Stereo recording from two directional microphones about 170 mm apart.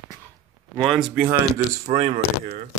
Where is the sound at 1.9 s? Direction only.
35° right (ahead or behind).